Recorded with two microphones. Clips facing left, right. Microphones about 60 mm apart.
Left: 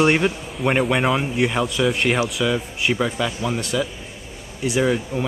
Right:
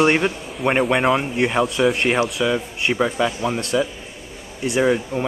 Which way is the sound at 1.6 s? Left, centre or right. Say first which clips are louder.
Right 2 dB; centre.